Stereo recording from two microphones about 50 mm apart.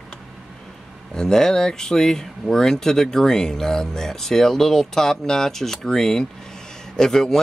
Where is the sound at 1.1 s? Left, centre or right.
Centre.